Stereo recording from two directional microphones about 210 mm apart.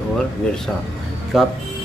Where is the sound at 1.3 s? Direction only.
Centre (ahead or behind).